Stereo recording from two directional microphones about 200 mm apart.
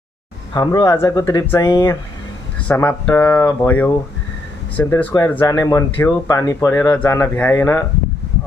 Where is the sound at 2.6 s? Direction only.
10° left (ahead or behind).